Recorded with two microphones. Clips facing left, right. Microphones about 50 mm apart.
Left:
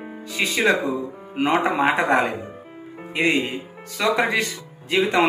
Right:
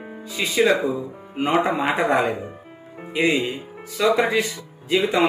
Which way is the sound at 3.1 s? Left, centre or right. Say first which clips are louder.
Even; left.